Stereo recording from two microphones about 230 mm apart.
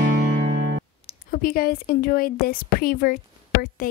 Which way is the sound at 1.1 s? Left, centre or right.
Left.